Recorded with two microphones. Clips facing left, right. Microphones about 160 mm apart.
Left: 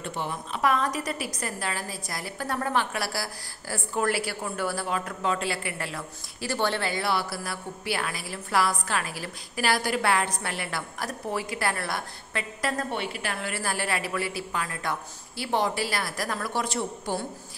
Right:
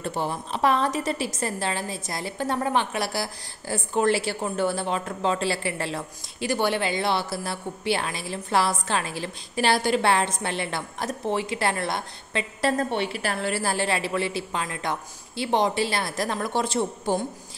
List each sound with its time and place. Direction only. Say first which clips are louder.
0.0 s a woman's voice: right 4 dB; 35° right (ahead or behind)
6.4 s a woman's voice: right 3 dB; 15° right (ahead or behind)